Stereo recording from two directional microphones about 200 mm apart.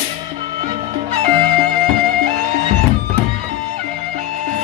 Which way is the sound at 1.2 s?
35° right (ahead or behind).